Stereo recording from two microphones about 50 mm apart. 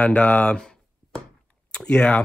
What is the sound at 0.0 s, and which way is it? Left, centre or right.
Speech, left.